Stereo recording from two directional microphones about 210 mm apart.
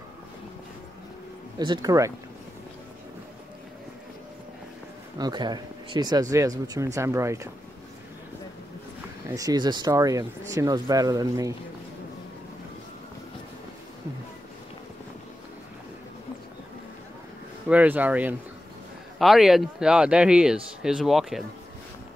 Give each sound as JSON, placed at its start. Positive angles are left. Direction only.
{"t": 1.6, "sound": "speech", "side_deg": -20}
{"t": 5.2, "sound": "speech", "side_deg": -20}
{"t": 9.3, "sound": "speech", "side_deg": -15}
{"t": 17.6, "sound": "speech", "side_deg": -10}